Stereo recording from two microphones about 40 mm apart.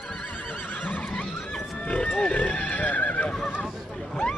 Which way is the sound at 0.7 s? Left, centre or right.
Left.